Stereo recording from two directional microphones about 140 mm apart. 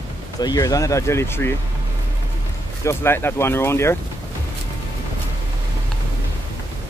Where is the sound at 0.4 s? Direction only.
25° left (ahead or behind).